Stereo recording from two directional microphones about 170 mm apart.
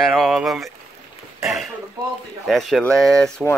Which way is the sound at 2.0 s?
20° right (ahead or behind).